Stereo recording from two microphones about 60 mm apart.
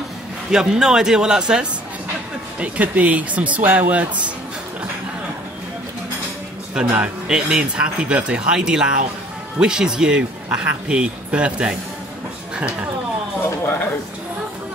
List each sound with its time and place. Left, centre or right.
0.5 s speech: centre
2.6 s speech: right
6.8 s speech: centre
13.4 s a sound: left